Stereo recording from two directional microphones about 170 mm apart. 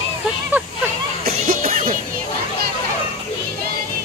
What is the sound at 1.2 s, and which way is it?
Music, 55° right (ahead or behind).